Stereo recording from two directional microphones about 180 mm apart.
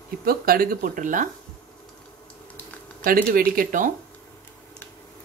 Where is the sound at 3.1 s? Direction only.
55° right (ahead or behind).